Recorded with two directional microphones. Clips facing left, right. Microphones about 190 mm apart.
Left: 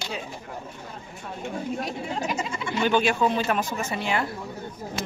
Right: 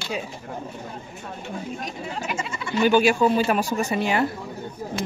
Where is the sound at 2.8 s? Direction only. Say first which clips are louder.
Right 4 dB; 5° right (ahead or behind).